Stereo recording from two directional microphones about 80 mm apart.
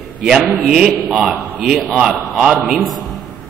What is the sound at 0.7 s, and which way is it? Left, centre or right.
A man's voice, centre.